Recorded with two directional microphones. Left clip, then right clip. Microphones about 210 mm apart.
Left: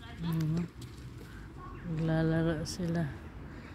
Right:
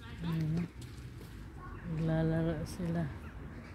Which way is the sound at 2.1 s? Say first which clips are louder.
Left 3 dB; 15° left (ahead or behind).